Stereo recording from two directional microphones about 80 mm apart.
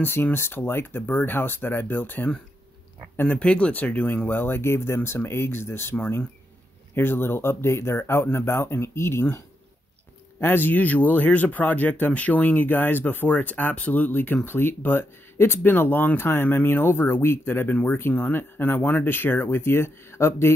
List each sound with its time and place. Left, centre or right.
0.0 s speech: left
10.4 s speech: left